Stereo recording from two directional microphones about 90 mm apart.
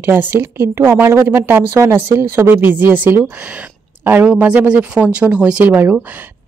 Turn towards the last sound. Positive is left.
turn(degrees=-20)  # may be behind; listen again after turning